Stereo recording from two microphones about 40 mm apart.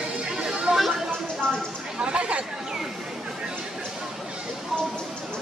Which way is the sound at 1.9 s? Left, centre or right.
Right.